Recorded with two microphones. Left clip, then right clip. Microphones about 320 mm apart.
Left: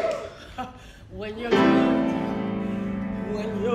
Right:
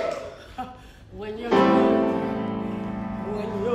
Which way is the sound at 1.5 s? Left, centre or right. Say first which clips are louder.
Right 1 dB; centre.